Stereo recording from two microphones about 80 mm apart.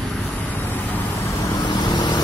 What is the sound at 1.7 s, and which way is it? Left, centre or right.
Vehicle, left.